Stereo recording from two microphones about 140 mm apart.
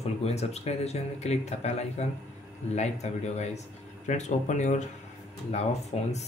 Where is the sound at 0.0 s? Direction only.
50° left (ahead or behind).